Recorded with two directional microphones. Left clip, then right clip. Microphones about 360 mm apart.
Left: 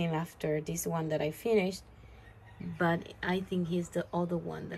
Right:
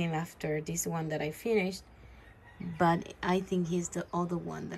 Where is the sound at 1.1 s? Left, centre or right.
Centre.